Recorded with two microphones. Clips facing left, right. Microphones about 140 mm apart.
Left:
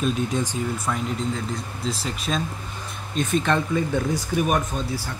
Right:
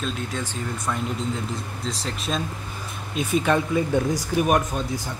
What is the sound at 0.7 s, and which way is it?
Speech, centre (ahead or behind).